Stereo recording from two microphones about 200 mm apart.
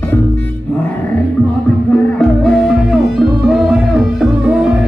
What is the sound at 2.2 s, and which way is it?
Music, centre (ahead or behind).